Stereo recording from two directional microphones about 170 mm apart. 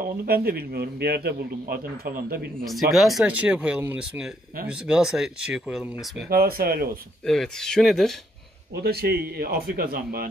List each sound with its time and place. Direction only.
0.0 s a man's voice: 60° right (ahead or behind)
2.6 s speech: centre (ahead or behind)
6.2 s a man's voice: 65° right (ahead or behind)
7.2 s speech: 5° left (ahead or behind)
8.8 s a man's voice: 70° right (ahead or behind)